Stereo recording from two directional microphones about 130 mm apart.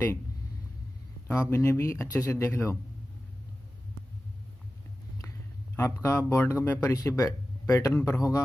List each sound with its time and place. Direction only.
1.2 s speech: 15° left (ahead or behind)
6.0 s speech: 20° left (ahead or behind)